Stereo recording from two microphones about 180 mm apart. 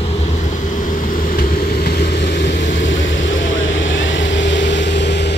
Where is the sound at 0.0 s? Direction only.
40° left (ahead or behind).